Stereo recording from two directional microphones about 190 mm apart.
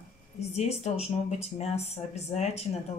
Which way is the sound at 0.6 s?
35° left (ahead or behind).